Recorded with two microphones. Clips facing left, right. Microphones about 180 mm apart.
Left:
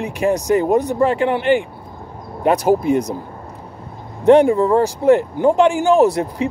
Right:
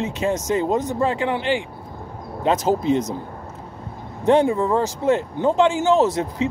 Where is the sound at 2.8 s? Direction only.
20° right (ahead or behind).